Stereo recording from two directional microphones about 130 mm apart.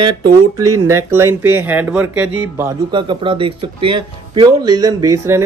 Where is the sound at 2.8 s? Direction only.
35° right (ahead or behind).